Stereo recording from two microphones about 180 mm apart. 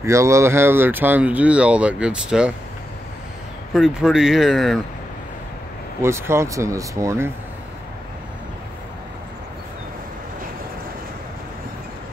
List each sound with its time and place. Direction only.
0.0 s speech: 15° right (ahead or behind)
3.7 s speech: 5° right (ahead or behind)
6.0 s speech: 15° right (ahead or behind)